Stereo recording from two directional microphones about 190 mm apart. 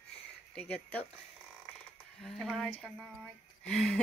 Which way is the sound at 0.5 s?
5° left (ahead or behind).